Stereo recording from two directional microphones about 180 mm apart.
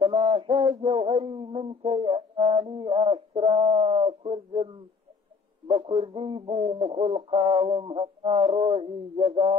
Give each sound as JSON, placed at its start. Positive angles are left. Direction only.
{"t": 0.0, "sound": "mantra", "side_deg": -30}